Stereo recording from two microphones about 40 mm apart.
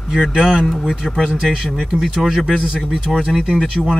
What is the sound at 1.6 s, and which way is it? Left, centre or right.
Speech, centre.